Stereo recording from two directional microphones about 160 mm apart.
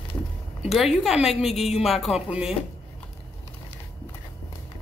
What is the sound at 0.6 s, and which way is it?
Speech, centre (ahead or behind).